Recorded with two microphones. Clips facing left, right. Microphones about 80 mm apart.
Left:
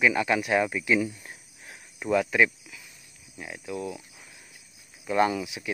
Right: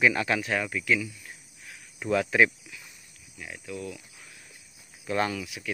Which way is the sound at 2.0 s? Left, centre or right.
Centre.